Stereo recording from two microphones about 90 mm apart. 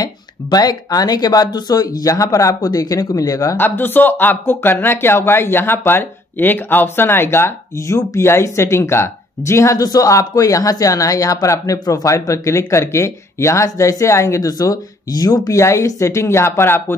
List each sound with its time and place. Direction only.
0.0 s speech: 50° left (ahead or behind)
3.5 s speech: 20° left (ahead or behind)
14.5 s speech: 45° left (ahead or behind); by 16.8 s 25° left (ahead or behind)